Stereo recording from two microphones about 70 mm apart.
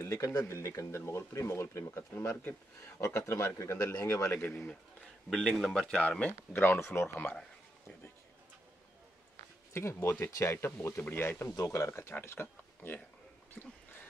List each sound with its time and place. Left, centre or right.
0.0 s speech: left
3.7 s speech: left
4.0 s speech: left
5.3 s speech: centre
6.5 s speech: left
9.8 s speech: left
11.5 s speech: left
11.9 s speech: left
13.6 s a sound: centre